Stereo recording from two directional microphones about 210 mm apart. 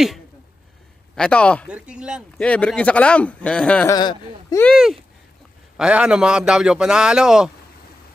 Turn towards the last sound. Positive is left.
turn(degrees=-5)  # may be behind; listen again after turning